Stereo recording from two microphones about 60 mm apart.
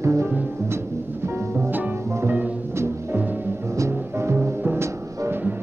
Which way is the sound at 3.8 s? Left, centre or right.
Right.